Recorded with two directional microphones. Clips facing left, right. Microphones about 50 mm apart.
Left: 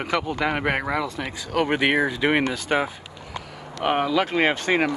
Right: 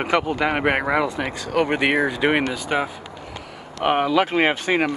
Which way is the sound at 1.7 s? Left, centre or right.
Centre.